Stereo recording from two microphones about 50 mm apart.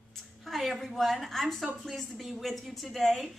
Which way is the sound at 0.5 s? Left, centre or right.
Centre.